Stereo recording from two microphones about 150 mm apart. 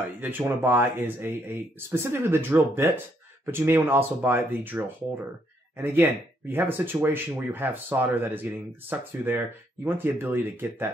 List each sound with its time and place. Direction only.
0.2 s speech: 15° right (ahead or behind)